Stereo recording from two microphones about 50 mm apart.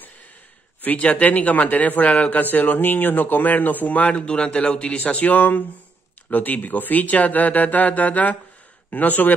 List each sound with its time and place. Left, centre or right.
0.8 s speech: left
2.4 s speech: left
4.1 s speech: left
4.9 s speech: left